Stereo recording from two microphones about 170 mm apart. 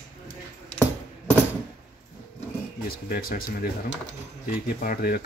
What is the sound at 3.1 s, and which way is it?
Speech, 60° left (ahead or behind).